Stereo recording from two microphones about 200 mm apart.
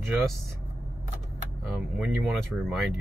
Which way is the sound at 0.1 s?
Centre (ahead or behind).